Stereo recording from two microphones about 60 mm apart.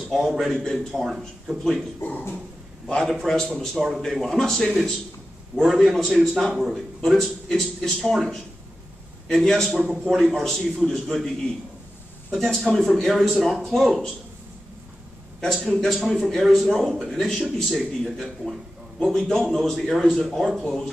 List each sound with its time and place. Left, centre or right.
0.1 s speech: centre
2.0 s speech: left
2.9 s a man's voice: centre
12.4 s speech: centre
15.4 s speech: centre